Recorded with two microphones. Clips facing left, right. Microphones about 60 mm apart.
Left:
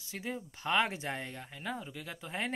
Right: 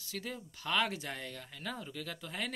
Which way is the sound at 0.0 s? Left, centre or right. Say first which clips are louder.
Left 2 dB; left.